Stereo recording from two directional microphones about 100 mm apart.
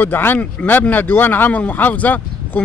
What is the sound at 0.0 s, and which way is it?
Speech, 20° left (ahead or behind).